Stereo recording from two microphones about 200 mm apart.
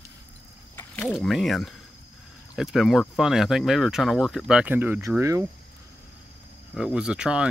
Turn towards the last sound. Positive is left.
turn(degrees=-5)  # may be behind; listen again after turning